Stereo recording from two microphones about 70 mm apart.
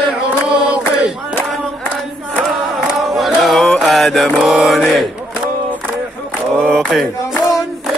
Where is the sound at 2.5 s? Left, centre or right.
Centre.